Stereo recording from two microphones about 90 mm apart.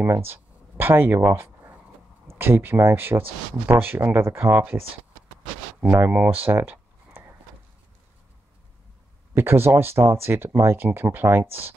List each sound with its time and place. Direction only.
0.0 s a sound: 25° right (ahead or behind)
2.2 s speech: 25° right (ahead or behind)
5.9 s speech: 25° right (ahead or behind)
6.4 s a sound: 20° right (ahead or behind)
9.3 s speech: 25° right (ahead or behind)
11.4 s speech: 90° right